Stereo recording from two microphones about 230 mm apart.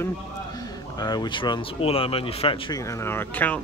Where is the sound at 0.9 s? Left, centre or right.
Centre.